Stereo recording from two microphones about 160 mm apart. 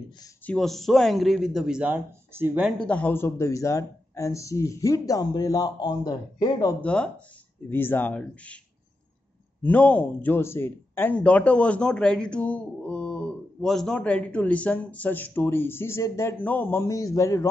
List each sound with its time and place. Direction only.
0.5 s speech: centre (ahead or behind)
2.8 s speech: 10° left (ahead or behind)
6.8 s speech: 5° left (ahead or behind)
9.6 s speech: 10° left (ahead or behind)